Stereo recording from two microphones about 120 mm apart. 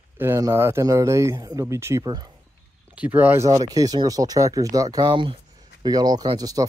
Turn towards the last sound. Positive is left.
turn(degrees=-30)  # may be behind; listen again after turning